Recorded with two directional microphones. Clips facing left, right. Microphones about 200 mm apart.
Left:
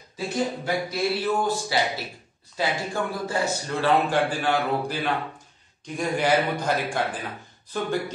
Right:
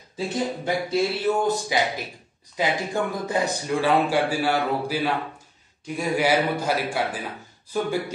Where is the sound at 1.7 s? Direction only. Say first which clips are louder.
Right 1 dB; 15° right (ahead or behind).